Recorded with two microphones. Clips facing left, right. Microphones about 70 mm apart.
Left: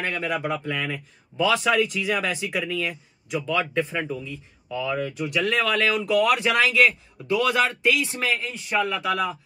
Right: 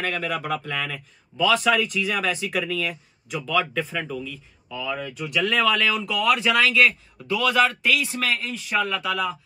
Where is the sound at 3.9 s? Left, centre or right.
Centre.